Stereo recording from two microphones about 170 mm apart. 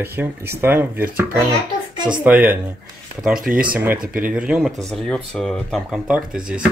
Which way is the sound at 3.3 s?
55° right (ahead or behind).